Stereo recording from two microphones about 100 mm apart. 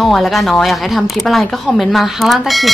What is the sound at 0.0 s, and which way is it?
Speech, centre (ahead or behind).